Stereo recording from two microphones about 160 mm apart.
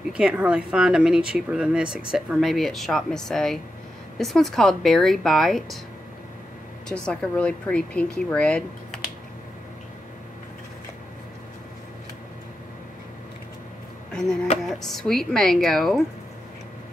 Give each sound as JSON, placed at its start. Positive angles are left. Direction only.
{"t": 0.2, "sound": "speech", "side_deg": -5}
{"t": 6.9, "sound": "speech", "side_deg": 5}
{"t": 14.1, "sound": "speech", "side_deg": 5}